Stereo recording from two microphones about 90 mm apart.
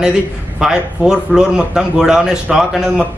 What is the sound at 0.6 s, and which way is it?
A man's voice, 5° right (ahead or behind).